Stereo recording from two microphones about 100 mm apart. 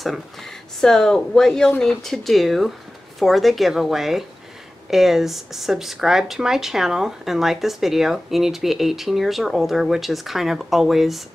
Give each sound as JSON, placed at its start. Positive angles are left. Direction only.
{"t": 0.0, "sound": "speech", "side_deg": 0}